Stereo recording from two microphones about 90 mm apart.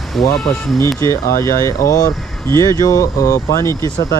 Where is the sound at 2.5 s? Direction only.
50° right (ahead or behind).